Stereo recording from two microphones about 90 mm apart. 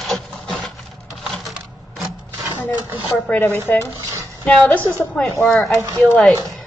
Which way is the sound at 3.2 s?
20° left (ahead or behind).